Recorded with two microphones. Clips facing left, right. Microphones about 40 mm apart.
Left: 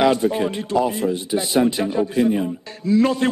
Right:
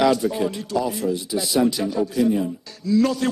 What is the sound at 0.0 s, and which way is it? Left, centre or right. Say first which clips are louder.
A man's voice: left 2 dB; left.